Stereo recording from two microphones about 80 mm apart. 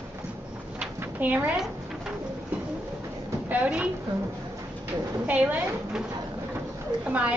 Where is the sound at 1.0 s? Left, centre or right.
Right.